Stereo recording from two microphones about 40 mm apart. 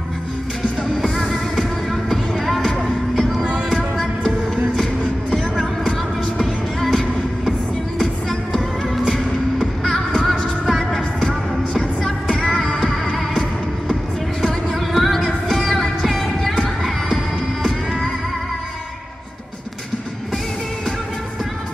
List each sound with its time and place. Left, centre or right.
1.0 s music: centre
5.3 s music: centre
9.8 s music: centre
11.8 s music: centre
14.7 s music: centre